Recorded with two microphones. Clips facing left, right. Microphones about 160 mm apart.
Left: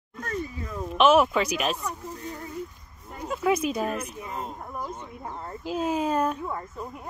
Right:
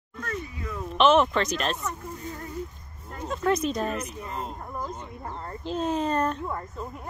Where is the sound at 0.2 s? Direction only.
40° left (ahead or behind).